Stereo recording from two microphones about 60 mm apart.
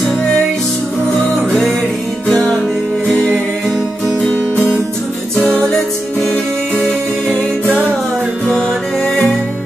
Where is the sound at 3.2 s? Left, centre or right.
Centre.